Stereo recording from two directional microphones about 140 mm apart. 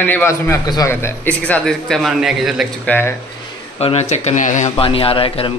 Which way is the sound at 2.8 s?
10° left (ahead or behind).